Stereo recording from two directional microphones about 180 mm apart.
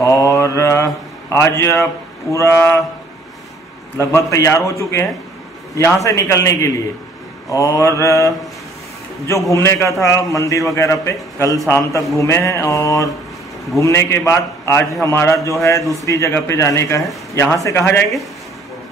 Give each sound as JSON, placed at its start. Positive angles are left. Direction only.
{"t": 0.0, "sound": "mantra", "side_deg": 15}
{"t": 1.3, "sound": "a man's voice", "side_deg": 15}
{"t": 4.0, "sound": "a man's voice", "side_deg": 15}
{"t": 9.5, "sound": "a man's voice", "side_deg": 15}
{"t": 15.8, "sound": "speech", "side_deg": 0}
{"t": 16.1, "sound": "a man's voice", "side_deg": 15}